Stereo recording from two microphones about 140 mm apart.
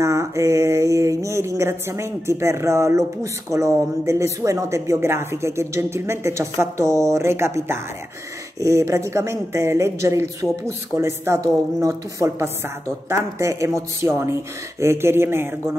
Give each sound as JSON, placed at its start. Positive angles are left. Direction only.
{"t": 0.0, "sound": "mantra", "side_deg": -20}
{"t": 14.8, "sound": "speech", "side_deg": -20}